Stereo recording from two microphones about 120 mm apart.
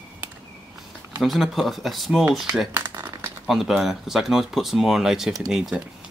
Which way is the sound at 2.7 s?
25° right (ahead or behind).